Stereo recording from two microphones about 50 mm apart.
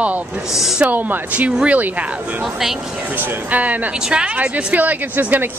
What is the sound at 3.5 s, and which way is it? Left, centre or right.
Speech, right.